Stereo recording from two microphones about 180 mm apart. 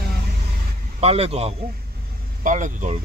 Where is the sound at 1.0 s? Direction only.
35° right (ahead or behind).